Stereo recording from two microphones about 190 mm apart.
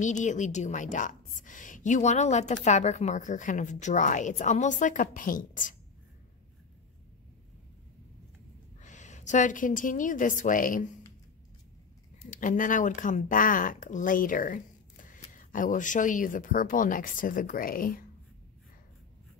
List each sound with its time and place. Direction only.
0.0 s a woman's voice: 40° left (ahead or behind)
8.8 s a woman's voice: 40° left (ahead or behind)
12.3 s speech: 45° left (ahead or behind)